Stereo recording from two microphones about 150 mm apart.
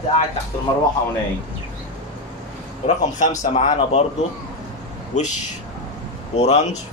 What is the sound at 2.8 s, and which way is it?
Speech, 50° left (ahead or behind).